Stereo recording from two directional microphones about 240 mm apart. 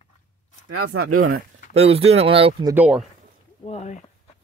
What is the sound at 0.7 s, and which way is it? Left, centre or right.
Speech, right.